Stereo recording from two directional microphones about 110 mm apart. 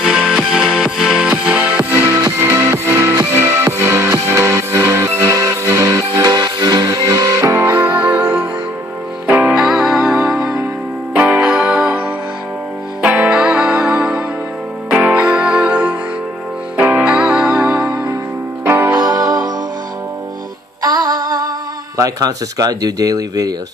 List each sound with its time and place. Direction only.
0.0 s music: 5° right (ahead or behind)
13.0 s music: 15° right (ahead or behind)
18.6 s music: 20° right (ahead or behind)
18.9 s music: 35° right (ahead or behind)
20.8 s music: 35° right (ahead or behind)
21.9 s speech: 35° right (ahead or behind)